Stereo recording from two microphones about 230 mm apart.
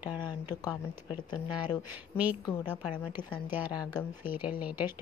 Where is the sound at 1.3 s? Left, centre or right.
Centre.